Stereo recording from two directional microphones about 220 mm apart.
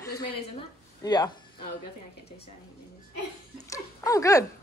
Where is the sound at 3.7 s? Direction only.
15° left (ahead or behind).